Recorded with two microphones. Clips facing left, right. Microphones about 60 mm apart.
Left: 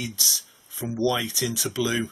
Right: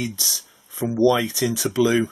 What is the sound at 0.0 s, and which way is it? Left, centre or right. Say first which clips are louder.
Speech: right 4 dB; right.